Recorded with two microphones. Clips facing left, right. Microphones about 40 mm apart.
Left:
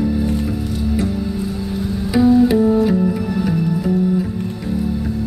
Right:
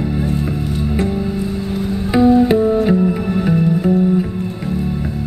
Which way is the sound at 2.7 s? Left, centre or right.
Right.